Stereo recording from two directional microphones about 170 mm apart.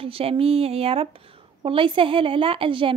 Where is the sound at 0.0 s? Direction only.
35° right (ahead or behind).